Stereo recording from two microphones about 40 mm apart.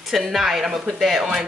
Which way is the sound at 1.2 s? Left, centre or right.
Centre.